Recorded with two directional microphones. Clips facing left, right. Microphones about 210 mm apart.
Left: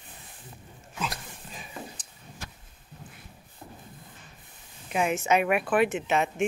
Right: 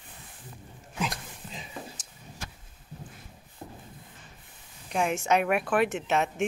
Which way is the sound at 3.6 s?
30° right (ahead or behind).